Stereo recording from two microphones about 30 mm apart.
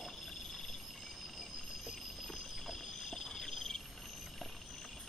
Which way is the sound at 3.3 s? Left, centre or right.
Centre.